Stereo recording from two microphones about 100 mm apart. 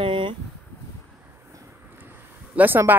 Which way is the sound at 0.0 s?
55° right (ahead or behind).